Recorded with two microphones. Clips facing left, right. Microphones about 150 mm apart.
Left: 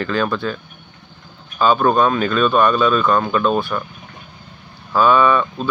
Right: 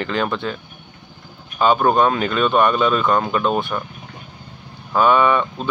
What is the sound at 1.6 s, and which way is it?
Speech, 20° right (ahead or behind).